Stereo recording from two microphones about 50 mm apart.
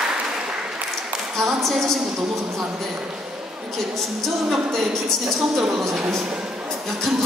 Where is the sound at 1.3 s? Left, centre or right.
Centre.